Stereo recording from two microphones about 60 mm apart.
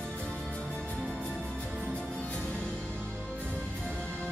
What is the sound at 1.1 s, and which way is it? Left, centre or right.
Music, right.